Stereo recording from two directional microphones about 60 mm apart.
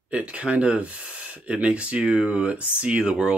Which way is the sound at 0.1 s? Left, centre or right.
Centre.